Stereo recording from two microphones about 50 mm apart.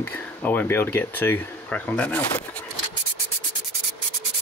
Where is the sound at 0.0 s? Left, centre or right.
Left.